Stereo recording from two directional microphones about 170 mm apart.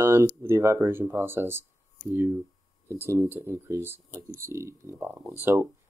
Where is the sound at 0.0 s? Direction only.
15° right (ahead or behind).